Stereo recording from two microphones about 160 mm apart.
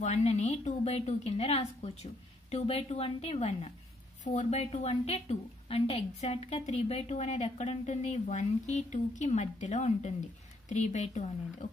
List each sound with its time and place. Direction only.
0.0 s a woman's voice: 45° left (ahead or behind)